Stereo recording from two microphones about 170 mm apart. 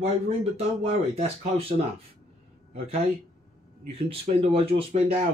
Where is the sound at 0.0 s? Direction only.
35° right (ahead or behind).